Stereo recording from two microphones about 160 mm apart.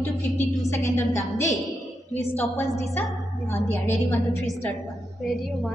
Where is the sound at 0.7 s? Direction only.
15° left (ahead or behind).